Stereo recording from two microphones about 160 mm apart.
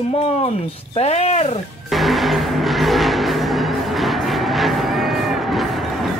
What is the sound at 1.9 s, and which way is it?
Music, centre (ahead or behind).